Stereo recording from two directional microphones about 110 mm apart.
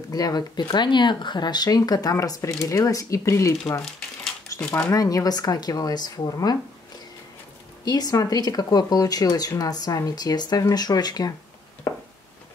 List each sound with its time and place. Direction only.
0.1 s speech: 35° left (ahead or behind)
7.8 s speech: 35° left (ahead or behind)
11.9 s a sound: 30° left (ahead or behind)